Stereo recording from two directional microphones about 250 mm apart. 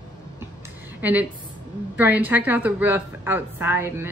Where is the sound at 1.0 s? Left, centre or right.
Centre.